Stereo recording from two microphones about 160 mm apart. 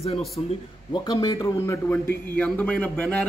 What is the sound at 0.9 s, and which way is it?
Speech, 25° left (ahead or behind).